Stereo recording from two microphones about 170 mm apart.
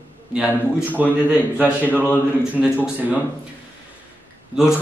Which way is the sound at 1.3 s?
10° right (ahead or behind).